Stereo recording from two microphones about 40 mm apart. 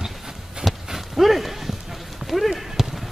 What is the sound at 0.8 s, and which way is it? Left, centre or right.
Horse, centre.